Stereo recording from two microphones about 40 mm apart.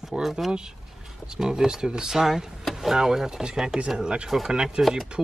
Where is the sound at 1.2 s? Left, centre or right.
Centre.